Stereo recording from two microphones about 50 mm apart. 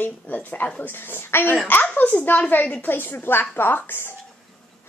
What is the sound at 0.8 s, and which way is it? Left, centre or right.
A woman's voice, left.